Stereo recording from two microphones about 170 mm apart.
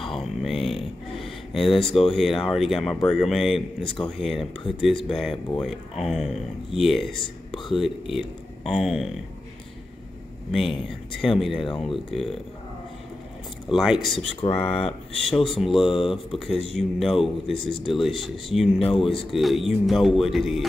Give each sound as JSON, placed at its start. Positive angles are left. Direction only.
{"t": 0.0, "sound": "a sound", "side_deg": 0}
{"t": 2.1, "sound": "speech", "side_deg": 0}
{"t": 10.5, "sound": "speech", "side_deg": 0}
{"t": 13.7, "sound": "speech", "side_deg": 0}
{"t": 14.6, "sound": "speech", "side_deg": 35}
{"t": 15.2, "sound": "speech", "side_deg": 0}
{"t": 18.8, "sound": "speech", "side_deg": 35}
{"t": 19.0, "sound": "speech", "side_deg": 0}